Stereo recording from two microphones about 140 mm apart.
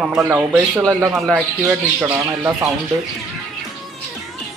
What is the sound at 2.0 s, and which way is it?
Speech, 15° right (ahead or behind).